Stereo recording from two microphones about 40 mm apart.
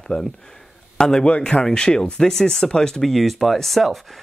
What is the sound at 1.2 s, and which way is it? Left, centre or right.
Speech, left.